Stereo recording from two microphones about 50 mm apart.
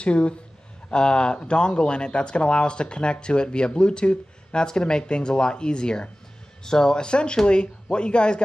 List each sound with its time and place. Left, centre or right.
0.0 s speech: left